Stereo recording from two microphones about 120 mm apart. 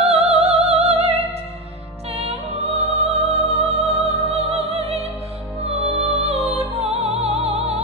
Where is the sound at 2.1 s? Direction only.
60° right (ahead or behind).